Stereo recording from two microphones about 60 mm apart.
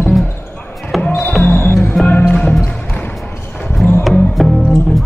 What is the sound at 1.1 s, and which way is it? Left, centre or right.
Music, left.